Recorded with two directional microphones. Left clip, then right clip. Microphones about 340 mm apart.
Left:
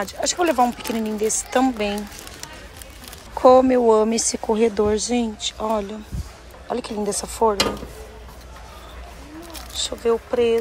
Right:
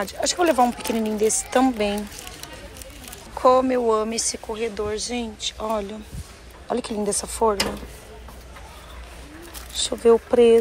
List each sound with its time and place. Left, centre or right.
0.0 s a woman's voice: centre
3.4 s speech: centre
9.8 s a woman's voice: centre